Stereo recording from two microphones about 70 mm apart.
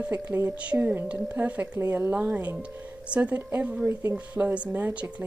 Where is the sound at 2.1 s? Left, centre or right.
Right.